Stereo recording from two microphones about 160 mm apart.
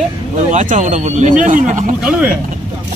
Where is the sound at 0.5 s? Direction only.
55° right (ahead or behind).